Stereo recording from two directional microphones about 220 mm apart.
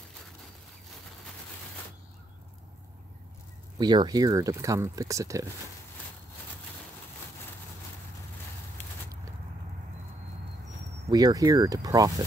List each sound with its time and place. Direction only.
3.7 s speech: 20° right (ahead or behind)
11.1 s speech: 15° right (ahead or behind)